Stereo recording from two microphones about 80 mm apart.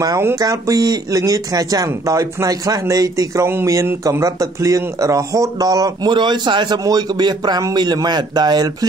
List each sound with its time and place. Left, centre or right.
0.4 s speech: right
6.8 s speech: right